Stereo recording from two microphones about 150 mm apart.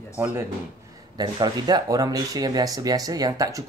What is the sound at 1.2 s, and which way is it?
Speech, 25° right (ahead or behind).